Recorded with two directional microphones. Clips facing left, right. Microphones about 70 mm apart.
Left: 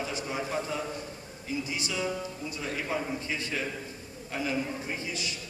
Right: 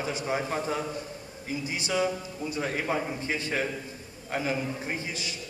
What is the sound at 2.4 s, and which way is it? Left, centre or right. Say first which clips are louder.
A man's voice: right 7 dB; right.